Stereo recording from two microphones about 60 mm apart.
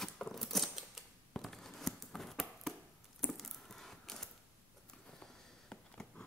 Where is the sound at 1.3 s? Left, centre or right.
Centre.